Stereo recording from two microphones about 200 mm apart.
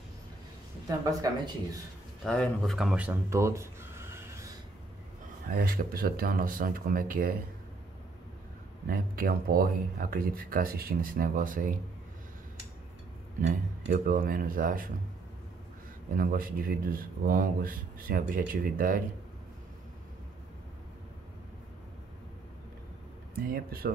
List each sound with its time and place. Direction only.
0.8 s speech: 15° right (ahead or behind)
2.2 s speech: 5° left (ahead or behind); by 4.5 s 15° right (ahead or behind)
5.6 s speech: 45° right (ahead or behind)
8.8 s speech: 45° right (ahead or behind)
13.5 s speech: 45° right (ahead or behind)
16.2 s speech: 45° right (ahead or behind)
23.5 s speech: 50° right (ahead or behind)